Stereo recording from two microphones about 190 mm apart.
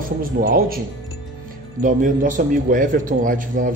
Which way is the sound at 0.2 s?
50° right (ahead or behind).